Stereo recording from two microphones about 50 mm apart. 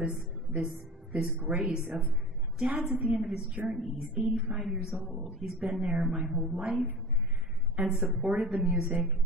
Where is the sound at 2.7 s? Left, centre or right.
Right.